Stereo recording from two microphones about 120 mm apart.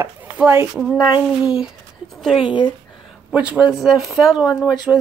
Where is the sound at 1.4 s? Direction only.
5° right (ahead or behind).